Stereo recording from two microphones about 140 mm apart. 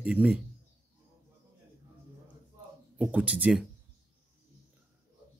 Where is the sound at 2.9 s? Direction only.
10° right (ahead or behind).